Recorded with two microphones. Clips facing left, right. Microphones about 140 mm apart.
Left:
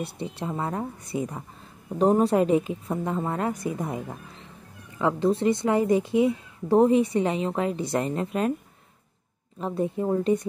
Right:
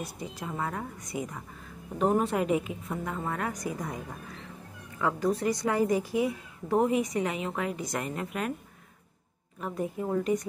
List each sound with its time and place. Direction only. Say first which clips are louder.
0.0 s a woman's voice: left 6 dB; 30° left (ahead or behind)
9.6 s speech: left 6 dB; 25° left (ahead or behind)